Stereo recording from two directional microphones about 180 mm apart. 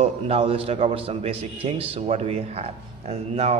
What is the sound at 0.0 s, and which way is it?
A man's voice, 35° right (ahead or behind).